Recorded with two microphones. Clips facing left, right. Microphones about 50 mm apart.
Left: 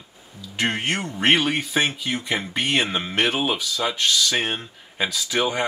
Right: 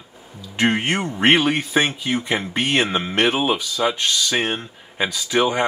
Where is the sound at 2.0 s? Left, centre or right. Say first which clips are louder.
Right 3 dB; centre.